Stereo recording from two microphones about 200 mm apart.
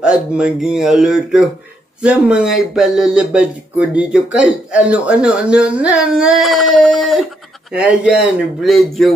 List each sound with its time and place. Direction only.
0.0 s speech: 5° right (ahead or behind)